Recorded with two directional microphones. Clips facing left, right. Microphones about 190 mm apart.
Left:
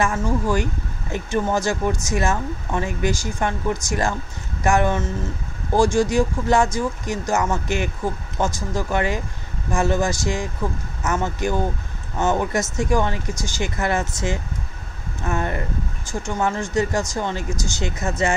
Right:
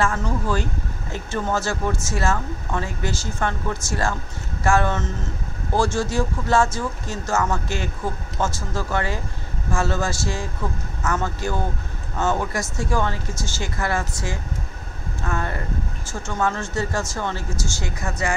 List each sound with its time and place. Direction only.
0.0 s speech: 10° left (ahead or behind)